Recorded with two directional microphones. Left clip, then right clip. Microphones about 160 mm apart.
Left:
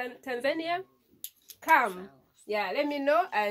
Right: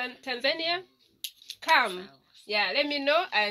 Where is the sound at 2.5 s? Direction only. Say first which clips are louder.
Right 3 dB; 30° right (ahead or behind).